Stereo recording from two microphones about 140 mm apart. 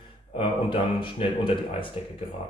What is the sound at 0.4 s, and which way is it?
Speech, 35° left (ahead or behind).